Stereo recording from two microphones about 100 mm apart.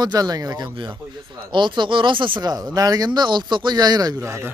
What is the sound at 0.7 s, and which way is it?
Speech, 50° right (ahead or behind).